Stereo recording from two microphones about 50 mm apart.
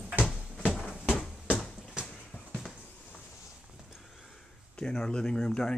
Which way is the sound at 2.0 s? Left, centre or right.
Centre.